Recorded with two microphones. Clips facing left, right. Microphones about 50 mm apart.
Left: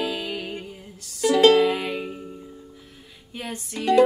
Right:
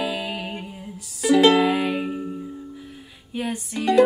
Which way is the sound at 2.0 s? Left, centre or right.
Centre.